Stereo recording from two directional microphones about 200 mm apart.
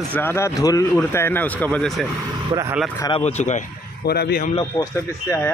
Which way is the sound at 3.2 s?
35° left (ahead or behind).